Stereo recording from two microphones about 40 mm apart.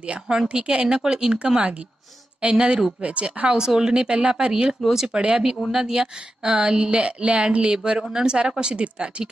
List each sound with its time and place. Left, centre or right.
0.3 s a woman's voice: right